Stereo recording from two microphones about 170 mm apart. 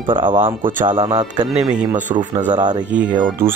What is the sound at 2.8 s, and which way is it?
Speech, 5° right (ahead or behind).